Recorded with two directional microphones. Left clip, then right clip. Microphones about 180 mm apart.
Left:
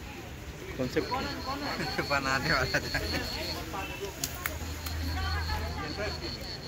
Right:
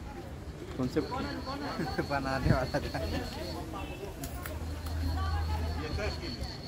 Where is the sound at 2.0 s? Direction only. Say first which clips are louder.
Left 4 dB; 40° right (ahead or behind).